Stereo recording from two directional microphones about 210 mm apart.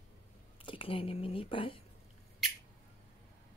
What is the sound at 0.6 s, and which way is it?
Speech, 25° left (ahead or behind).